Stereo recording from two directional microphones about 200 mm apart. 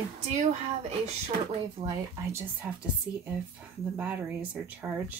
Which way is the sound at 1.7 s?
20° right (ahead or behind).